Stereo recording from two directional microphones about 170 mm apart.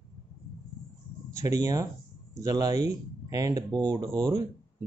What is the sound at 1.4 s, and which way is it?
Speech, 20° right (ahead or behind).